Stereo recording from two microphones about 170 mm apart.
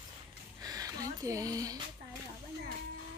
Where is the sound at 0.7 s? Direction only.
20° right (ahead or behind).